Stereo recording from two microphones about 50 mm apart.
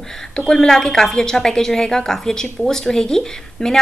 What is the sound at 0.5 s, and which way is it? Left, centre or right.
A woman's voice, centre.